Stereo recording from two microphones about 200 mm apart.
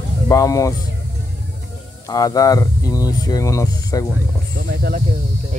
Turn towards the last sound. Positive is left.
turn(degrees=-45)  # may be behind; listen again after turning